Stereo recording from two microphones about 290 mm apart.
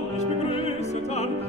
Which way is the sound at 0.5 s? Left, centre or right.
Left.